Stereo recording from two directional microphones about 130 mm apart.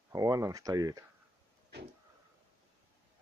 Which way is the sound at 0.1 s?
25° right (ahead or behind).